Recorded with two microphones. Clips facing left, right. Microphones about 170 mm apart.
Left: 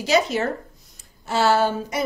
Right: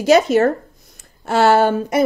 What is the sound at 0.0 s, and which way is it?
A woman's voice, 50° right (ahead or behind).